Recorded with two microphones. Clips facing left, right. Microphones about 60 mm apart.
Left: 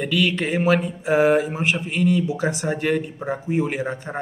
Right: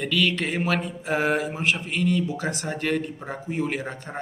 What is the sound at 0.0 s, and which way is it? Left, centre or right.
A man's voice, centre.